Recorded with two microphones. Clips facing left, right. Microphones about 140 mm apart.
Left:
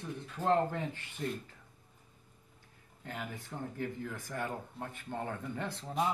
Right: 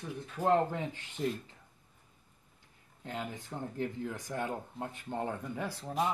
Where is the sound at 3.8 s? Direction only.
15° right (ahead or behind).